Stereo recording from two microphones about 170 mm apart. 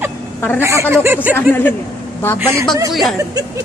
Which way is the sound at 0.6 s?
15° right (ahead or behind).